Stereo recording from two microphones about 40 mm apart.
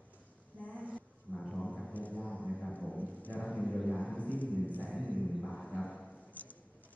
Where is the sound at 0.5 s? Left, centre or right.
Left.